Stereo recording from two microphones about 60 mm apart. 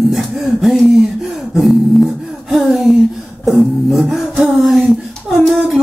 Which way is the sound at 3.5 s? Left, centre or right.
Centre.